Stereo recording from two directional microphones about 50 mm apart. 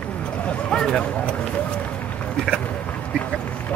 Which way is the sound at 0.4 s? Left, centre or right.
Left.